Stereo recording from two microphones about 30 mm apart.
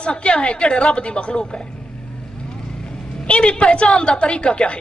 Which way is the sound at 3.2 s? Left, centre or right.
Left.